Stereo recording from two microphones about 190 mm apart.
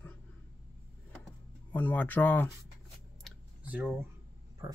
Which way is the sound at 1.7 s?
10° left (ahead or behind).